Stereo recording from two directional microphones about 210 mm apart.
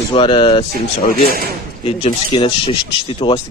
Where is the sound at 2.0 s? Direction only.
25° left (ahead or behind).